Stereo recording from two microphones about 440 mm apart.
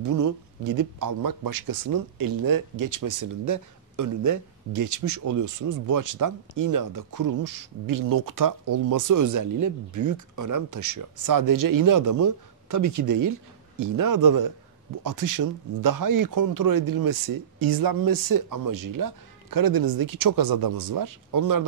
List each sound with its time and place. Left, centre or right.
0.0 s a man's voice: right